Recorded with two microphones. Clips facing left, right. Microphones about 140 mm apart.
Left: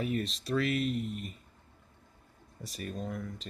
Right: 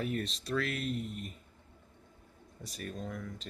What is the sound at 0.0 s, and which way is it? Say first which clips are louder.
Speech: left 2 dB; centre (ahead or behind).